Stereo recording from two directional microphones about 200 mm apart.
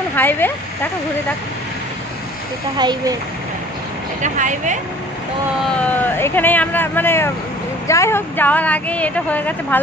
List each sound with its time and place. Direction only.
0.1 s speech: 10° left (ahead or behind)
2.8 s speech: 20° right (ahead or behind)
4.2 s speech: 40° right (ahead or behind)
5.8 s a woman's voice: 10° left (ahead or behind)